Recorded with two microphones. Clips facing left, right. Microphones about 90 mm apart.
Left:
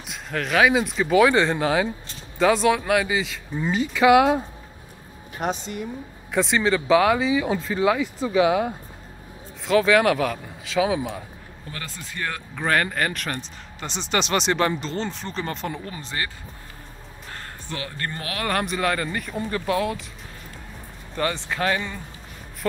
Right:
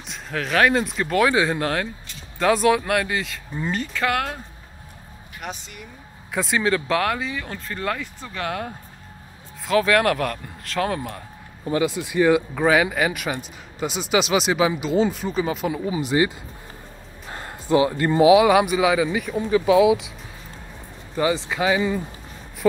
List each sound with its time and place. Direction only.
0.0 s speech: centre (ahead or behind)
5.4 s speech: 30° left (ahead or behind)
6.3 s speech: centre (ahead or behind)
11.8 s speech: 15° right (ahead or behind)
17.3 s speech: 15° right (ahead or behind)
21.1 s speech: 5° right (ahead or behind)